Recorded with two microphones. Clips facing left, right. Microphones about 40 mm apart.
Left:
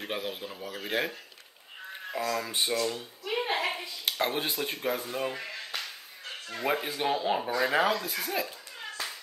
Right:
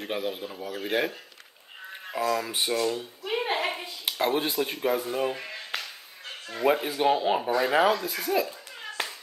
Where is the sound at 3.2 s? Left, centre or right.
Right.